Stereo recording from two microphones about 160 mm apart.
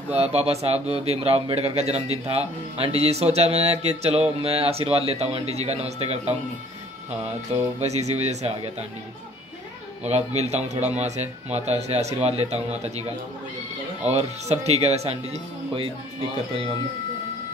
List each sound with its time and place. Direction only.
0.1 s speech: 40° right (ahead or behind)
7.8 s speech: 45° right (ahead or behind)
10.0 s speech: 45° right (ahead or behind)
14.1 s speech: 40° right (ahead or behind)